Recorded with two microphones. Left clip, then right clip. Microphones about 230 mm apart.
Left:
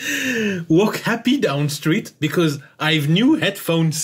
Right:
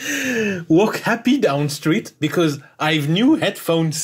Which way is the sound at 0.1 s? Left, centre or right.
Centre.